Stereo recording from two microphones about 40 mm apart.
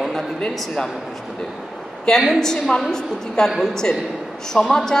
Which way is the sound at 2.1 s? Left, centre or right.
Centre.